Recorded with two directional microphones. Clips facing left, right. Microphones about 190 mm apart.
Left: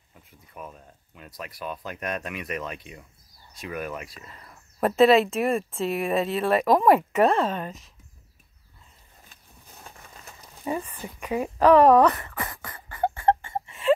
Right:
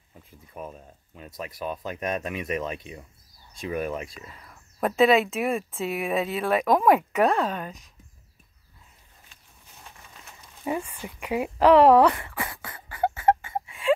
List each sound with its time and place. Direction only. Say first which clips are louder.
0.6 s speech: right 3 dB; 40° right (ahead or behind)
1.1 s speech: right 3 dB; 25° right (ahead or behind)
4.1 s speech: right 1 dB; centre (ahead or behind)
10.6 s a sound: even; 10° right (ahead or behind)